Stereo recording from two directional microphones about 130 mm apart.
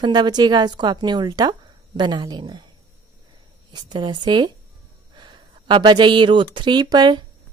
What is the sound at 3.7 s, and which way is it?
Speech, 35° right (ahead or behind).